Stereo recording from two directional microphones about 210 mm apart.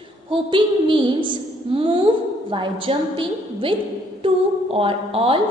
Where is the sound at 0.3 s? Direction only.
25° right (ahead or behind).